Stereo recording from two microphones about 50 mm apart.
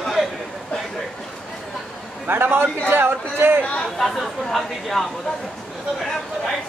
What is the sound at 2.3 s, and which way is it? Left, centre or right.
Speech, right.